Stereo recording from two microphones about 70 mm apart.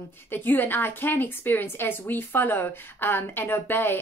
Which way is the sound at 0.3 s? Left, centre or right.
Left.